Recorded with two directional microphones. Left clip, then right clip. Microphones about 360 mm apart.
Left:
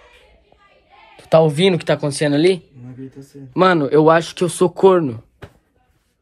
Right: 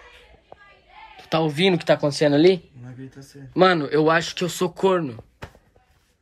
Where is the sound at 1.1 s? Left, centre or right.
Centre.